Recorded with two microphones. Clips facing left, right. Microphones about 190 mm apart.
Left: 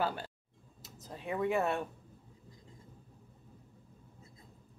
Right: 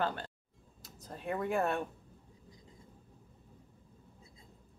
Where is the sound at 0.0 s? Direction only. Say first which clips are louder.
Even; 10° left (ahead or behind).